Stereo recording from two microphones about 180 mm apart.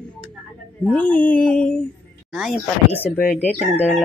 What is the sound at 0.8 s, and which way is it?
Crowing, 10° left (ahead or behind).